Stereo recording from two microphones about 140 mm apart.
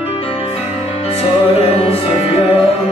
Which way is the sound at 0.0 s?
45° left (ahead or behind).